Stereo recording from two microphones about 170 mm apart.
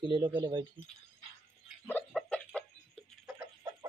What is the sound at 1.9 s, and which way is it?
Chicken, 10° left (ahead or behind).